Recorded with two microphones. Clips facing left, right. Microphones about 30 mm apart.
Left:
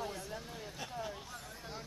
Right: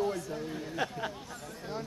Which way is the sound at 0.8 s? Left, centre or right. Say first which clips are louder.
Right 8 dB; right.